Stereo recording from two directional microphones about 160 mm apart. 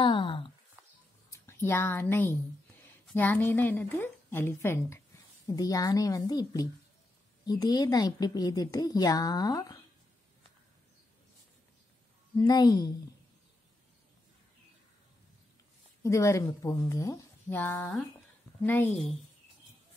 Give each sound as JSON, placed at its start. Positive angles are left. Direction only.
{"t": 0.0, "sound": "a sound", "side_deg": 30}
{"t": 1.4, "sound": "a woman's voice", "side_deg": 15}
{"t": 12.4, "sound": "a woman's voice", "side_deg": 25}
{"t": 16.0, "sound": "a woman's voice", "side_deg": 20}